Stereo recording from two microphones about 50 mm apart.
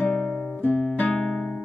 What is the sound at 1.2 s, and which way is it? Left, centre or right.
Music, centre.